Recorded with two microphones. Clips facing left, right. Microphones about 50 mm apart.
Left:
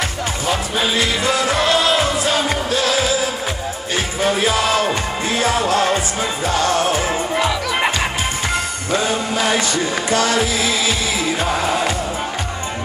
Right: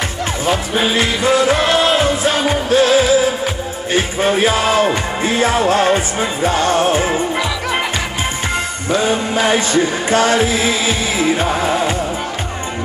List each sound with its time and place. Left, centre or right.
1.4 s music: right
8.9 s music: right